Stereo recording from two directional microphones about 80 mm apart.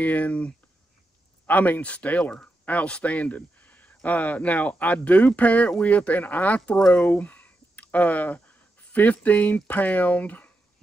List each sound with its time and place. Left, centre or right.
0.0 s speech: centre